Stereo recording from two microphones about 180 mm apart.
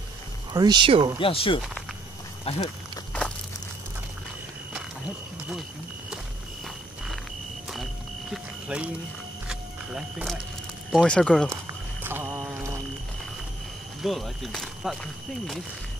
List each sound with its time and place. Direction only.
0.5 s speech: 25° right (ahead or behind)
1.2 s speech: 30° left (ahead or behind)
7.7 s smoke detector: centre (ahead or behind)
9.5 s a sound: 5° right (ahead or behind)
10.9 s speech: centre (ahead or behind)
12.0 s a sound: 10° right (ahead or behind)
14.0 s speech: centre (ahead or behind)